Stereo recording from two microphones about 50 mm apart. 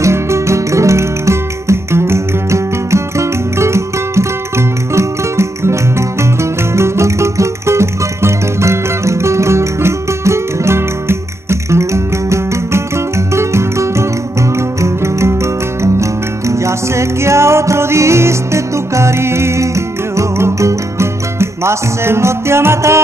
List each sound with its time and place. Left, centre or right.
0.0 s music: right